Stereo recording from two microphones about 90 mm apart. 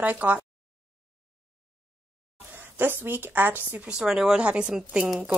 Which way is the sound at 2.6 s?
25° right (ahead or behind).